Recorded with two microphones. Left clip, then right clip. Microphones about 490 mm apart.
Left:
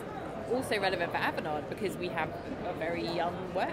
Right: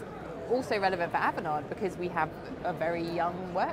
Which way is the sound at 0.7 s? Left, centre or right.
Right.